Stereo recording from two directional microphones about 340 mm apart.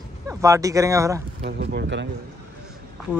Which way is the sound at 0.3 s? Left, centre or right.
Centre.